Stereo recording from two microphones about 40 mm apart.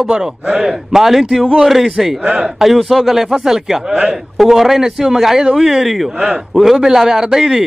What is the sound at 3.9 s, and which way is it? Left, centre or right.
Speech, right.